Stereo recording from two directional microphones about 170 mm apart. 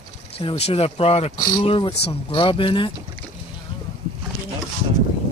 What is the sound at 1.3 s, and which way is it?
Speech, 25° left (ahead or behind).